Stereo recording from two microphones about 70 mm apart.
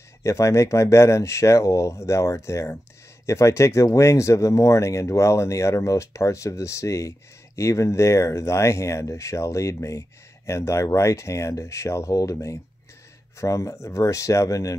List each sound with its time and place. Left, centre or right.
0.2 s speech: left